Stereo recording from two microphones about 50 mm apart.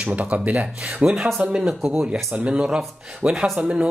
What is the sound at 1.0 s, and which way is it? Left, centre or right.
Speech, centre.